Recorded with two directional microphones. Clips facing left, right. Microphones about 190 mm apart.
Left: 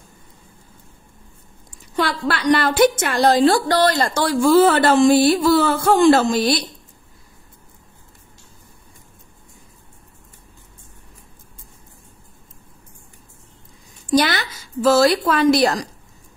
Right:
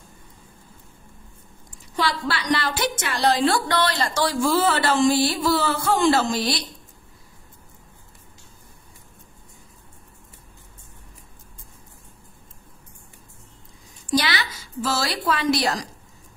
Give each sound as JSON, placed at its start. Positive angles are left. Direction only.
{"t": 2.0, "sound": "a woman's voice", "side_deg": 55}
{"t": 14.1, "sound": "a woman's voice", "side_deg": 50}